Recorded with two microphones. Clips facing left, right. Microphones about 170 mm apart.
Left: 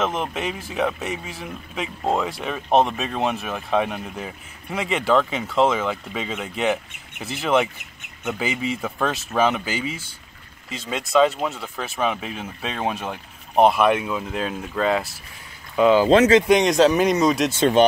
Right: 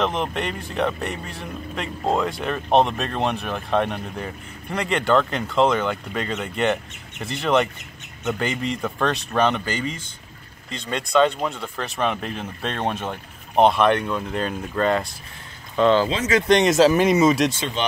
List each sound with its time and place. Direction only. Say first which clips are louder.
0.0 s speech: right 1 dB; centre (ahead or behind)
17.6 s speech: left 11 dB; 50° left (ahead or behind)